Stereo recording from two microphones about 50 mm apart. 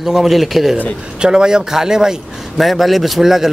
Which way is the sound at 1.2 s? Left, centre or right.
Centre.